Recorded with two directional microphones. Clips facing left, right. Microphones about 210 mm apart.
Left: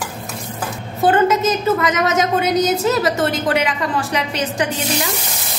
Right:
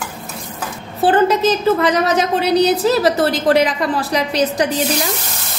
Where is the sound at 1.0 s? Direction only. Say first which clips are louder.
Right 1 dB; 35° right (ahead or behind).